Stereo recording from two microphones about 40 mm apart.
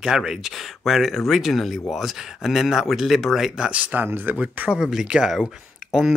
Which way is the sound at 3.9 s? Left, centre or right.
Right.